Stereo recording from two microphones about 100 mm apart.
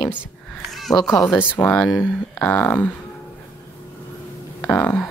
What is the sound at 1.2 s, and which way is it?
A woman's voice, 20° left (ahead or behind).